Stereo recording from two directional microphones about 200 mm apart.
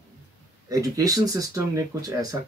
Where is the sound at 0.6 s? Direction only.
15° right (ahead or behind).